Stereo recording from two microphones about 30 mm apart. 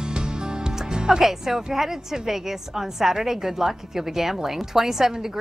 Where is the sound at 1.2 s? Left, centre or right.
Centre.